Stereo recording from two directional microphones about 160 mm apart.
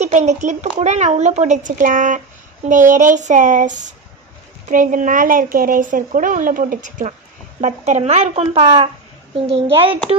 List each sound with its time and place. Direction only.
0.0 s a child's voice: 45° right (ahead or behind)